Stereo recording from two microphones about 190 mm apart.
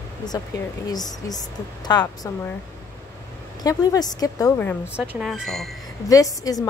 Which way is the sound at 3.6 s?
20° left (ahead or behind).